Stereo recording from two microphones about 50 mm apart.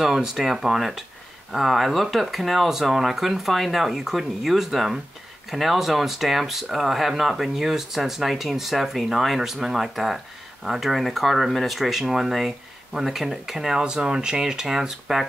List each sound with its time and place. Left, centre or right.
0.0 s speech: centre